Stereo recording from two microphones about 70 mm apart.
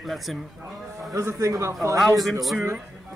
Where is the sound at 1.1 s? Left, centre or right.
Right.